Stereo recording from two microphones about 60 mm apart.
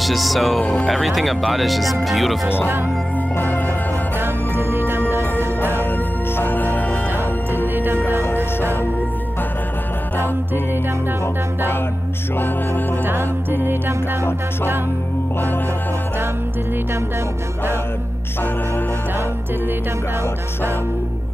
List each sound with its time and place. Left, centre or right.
0.0 s speech: centre
0.6 s speech: left
0.8 s speech: centre
3.3 s music: left
4.2 s music: right
5.6 s music: left
7.6 s music: right
10.1 s music: left
13.0 s music: right